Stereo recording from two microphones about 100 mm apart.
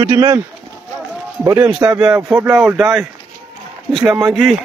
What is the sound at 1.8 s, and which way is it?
Speech, 30° right (ahead or behind).